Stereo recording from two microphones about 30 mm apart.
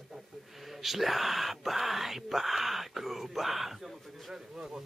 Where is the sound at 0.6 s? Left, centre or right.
Centre.